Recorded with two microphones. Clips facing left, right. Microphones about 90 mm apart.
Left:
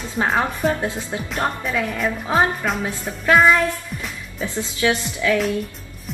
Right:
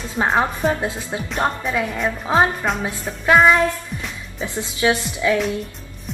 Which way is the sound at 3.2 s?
10° right (ahead or behind).